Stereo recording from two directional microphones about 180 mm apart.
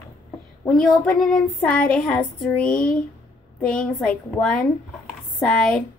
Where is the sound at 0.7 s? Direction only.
5° left (ahead or behind).